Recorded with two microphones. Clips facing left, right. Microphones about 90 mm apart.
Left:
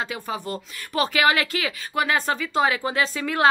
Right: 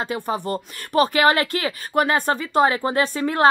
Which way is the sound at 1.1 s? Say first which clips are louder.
Right 3 dB; 45° right (ahead or behind).